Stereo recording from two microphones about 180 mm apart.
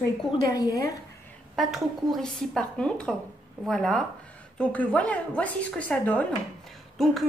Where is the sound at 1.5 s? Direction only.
Centre (ahead or behind).